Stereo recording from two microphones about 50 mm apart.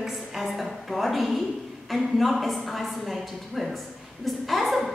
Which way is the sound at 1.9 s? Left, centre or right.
Centre.